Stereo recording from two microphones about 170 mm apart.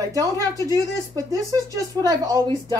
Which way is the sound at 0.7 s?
20° right (ahead or behind).